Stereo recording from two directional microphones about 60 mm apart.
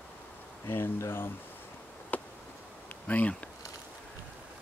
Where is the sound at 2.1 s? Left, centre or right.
Left.